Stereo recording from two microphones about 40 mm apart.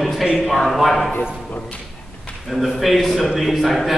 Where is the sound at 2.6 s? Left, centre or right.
Centre.